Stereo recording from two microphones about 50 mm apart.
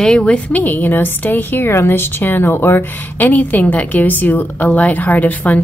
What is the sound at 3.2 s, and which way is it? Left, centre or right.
A woman's voice, left.